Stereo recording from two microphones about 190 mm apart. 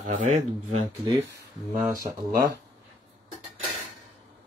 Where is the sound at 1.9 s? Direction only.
20° right (ahead or behind).